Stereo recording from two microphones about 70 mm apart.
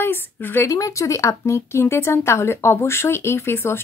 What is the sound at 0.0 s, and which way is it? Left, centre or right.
Speech, left.